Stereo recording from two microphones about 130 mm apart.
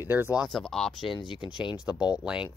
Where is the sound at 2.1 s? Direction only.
5° right (ahead or behind).